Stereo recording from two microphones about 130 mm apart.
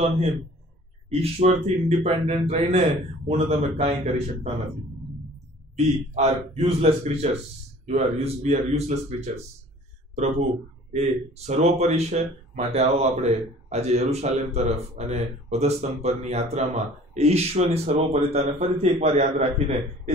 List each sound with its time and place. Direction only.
1.0 s speech: 50° right (ahead or behind)
5.8 s speech: 55° right (ahead or behind)
10.9 s speech: 60° right (ahead or behind)